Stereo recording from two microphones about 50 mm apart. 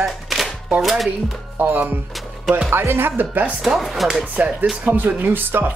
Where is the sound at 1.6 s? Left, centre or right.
Right.